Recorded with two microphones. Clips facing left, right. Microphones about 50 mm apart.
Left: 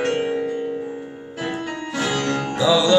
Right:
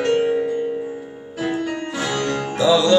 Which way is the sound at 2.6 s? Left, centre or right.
Centre.